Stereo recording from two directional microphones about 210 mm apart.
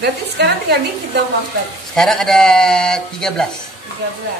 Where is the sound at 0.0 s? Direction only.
50° right (ahead or behind).